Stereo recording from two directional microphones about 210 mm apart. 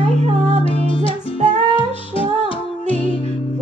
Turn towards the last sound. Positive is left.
turn(degrees=25)  # may be behind; listen again after turning